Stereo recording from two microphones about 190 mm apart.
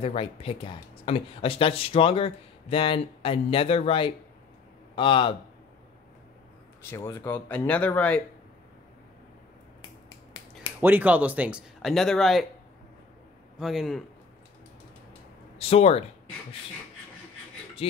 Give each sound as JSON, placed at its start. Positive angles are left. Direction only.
{"t": 0.0, "sound": "a man's voice", "side_deg": 30}
{"t": 6.8, "sound": "speech", "side_deg": 15}
{"t": 10.8, "sound": "speech", "side_deg": -10}
{"t": 13.6, "sound": "a man's voice", "side_deg": 0}
{"t": 15.5, "sound": "speech", "side_deg": 35}